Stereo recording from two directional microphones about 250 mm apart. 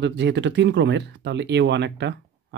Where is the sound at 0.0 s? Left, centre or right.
Right.